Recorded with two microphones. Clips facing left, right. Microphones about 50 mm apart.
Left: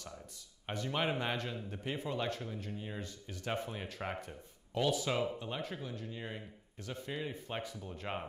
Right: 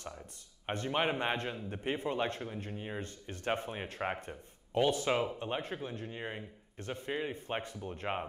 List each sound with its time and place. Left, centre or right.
0.8 s a man's voice: right
3.0 s a man's voice: right